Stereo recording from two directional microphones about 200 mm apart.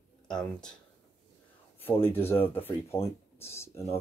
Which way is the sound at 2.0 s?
10° left (ahead or behind).